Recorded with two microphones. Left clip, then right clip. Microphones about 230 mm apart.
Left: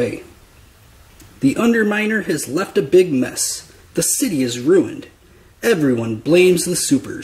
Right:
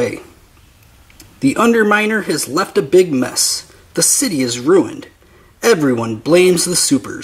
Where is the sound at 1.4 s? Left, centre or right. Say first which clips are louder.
Right 4 dB; centre.